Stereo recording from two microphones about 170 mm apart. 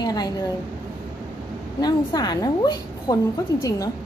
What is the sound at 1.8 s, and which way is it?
A woman's voice, 25° left (ahead or behind).